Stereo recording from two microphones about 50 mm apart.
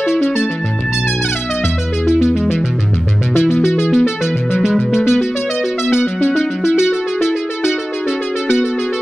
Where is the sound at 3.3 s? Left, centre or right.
Left.